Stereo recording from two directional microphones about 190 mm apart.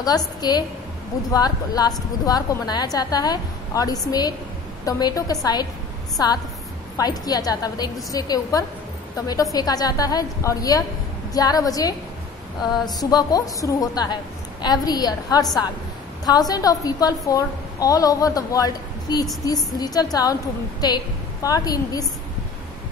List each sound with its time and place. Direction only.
0.0 s a woman's voice: 20° left (ahead or behind)